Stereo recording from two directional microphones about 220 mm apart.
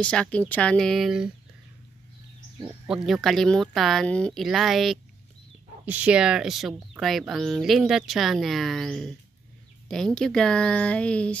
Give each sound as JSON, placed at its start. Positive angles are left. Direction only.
{"t": 0.0, "sound": "speech", "side_deg": 5}
{"t": 2.9, "sound": "speech", "side_deg": 0}